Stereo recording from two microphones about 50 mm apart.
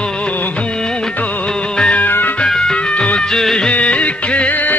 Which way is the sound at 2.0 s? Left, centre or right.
Left.